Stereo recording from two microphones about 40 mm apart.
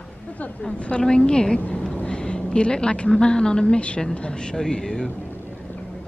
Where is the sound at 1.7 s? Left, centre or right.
Left.